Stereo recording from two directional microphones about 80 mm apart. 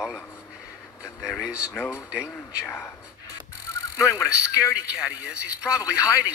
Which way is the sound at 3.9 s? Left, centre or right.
Left.